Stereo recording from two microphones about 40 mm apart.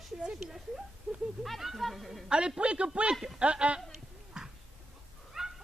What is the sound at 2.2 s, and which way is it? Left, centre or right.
Speech, right.